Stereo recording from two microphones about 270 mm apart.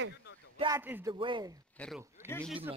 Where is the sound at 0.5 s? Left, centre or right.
Centre.